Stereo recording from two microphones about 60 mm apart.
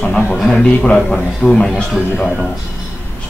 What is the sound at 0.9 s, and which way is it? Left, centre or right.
Speech, centre.